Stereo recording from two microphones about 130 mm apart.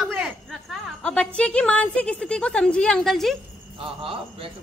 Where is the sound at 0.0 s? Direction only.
Centre (ahead or behind).